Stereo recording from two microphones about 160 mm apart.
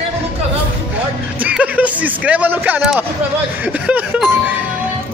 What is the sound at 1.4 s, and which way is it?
A man's voice, 10° right (ahead or behind).